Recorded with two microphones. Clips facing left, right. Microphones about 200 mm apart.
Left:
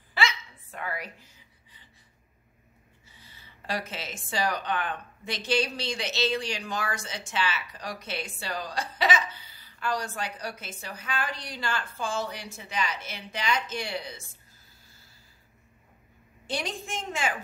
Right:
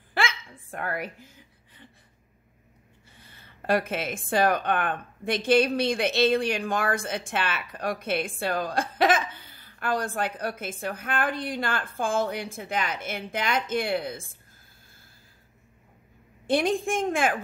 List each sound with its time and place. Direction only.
0.1 s a sound: 50° right (ahead or behind)
3.1 s a woman's voice: 55° right (ahead or behind)
16.4 s a woman's voice: 55° right (ahead or behind)